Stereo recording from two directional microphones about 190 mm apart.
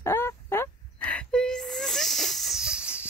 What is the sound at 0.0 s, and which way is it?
Fowl, 15° left (ahead or behind).